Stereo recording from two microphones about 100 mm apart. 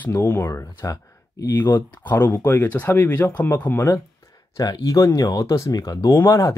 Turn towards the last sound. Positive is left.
turn(degrees=35)  # may be behind; listen again after turning